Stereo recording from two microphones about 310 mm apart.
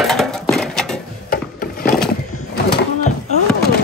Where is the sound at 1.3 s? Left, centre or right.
Left.